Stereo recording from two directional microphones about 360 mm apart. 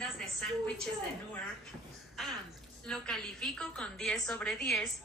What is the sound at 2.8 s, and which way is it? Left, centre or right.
A woman's voice, centre.